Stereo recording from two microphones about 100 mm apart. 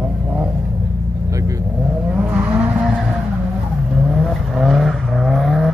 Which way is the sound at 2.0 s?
15° right (ahead or behind).